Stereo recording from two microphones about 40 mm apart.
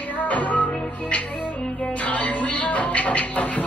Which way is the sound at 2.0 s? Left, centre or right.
Left.